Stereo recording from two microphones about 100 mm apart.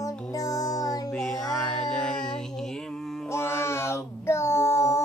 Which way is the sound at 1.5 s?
5° left (ahead or behind).